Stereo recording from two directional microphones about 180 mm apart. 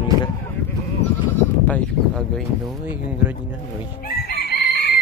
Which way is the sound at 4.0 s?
60° left (ahead or behind).